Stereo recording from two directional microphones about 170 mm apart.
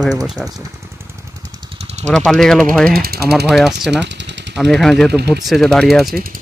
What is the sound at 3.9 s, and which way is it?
Machine gun, 90° right.